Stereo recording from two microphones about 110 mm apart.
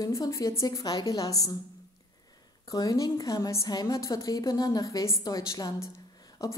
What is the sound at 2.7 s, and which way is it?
A woman's voice, 35° left (ahead or behind).